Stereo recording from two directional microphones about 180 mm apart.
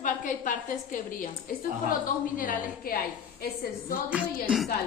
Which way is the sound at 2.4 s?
55° left (ahead or behind).